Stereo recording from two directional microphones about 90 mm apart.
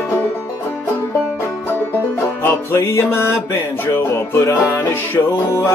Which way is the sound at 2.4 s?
30° left (ahead or behind).